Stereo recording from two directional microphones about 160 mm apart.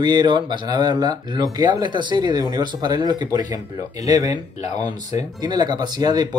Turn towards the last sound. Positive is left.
turn(degrees=-25)  # may be behind; listen again after turning